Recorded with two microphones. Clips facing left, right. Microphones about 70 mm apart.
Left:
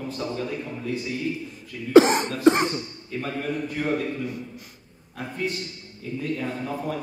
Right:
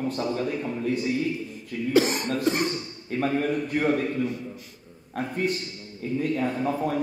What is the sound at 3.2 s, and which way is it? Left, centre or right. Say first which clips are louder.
Speech: right 4 dB; right.